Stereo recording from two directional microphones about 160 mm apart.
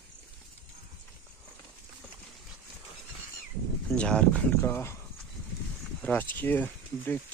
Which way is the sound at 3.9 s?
5° left (ahead or behind).